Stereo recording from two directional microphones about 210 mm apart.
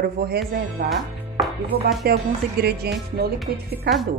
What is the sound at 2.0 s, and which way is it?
A woman's voice, 50° right (ahead or behind).